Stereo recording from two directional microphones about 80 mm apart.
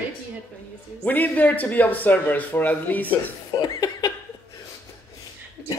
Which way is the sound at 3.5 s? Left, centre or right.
Left.